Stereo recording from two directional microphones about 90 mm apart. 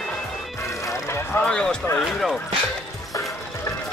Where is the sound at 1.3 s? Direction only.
10° left (ahead or behind).